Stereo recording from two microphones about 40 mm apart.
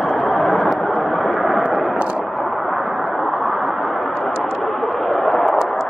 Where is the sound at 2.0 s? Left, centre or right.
Right.